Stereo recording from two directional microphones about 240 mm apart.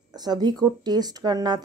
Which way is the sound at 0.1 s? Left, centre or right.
Centre.